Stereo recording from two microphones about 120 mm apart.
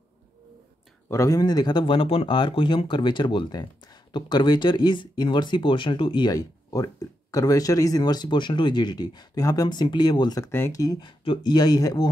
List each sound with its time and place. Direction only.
1.0 s speech: 25° left (ahead or behind)
10.4 s speech: 20° left (ahead or behind)
10.8 s speech: 35° left (ahead or behind)